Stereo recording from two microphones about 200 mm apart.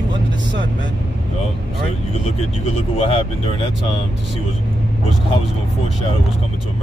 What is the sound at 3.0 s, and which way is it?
Speech, 30° left (ahead or behind).